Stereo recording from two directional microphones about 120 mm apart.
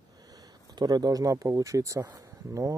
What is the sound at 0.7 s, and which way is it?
Speech, 35° right (ahead or behind).